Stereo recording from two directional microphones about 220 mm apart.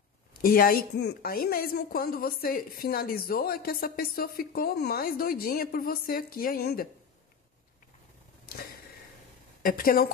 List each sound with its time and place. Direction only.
0.4 s a woman's voice: 40° left (ahead or behind)
9.6 s a woman's voice: 40° left (ahead or behind)